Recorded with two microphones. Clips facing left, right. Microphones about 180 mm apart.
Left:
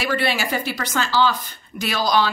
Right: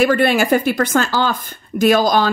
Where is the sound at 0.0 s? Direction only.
50° right (ahead or behind).